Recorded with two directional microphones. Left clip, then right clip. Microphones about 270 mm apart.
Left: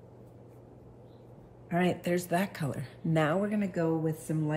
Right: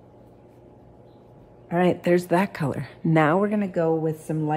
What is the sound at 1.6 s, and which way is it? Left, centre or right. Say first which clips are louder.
Speech: right 9 dB; right.